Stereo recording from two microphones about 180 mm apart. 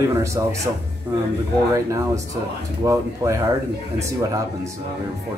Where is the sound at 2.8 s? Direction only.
15° right (ahead or behind).